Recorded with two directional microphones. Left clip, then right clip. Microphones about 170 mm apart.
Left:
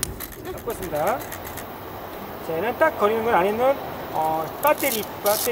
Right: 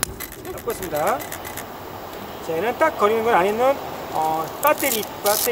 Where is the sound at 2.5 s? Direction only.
10° right (ahead or behind).